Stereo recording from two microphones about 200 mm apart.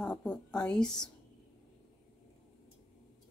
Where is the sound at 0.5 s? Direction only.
5° left (ahead or behind).